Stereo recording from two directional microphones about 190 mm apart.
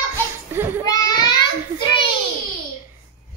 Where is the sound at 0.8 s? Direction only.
20° left (ahead or behind).